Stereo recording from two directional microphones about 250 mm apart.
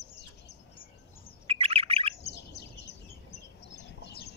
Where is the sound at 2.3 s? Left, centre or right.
Left.